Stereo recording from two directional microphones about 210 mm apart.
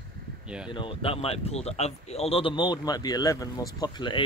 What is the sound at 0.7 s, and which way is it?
Speech, 25° left (ahead or behind).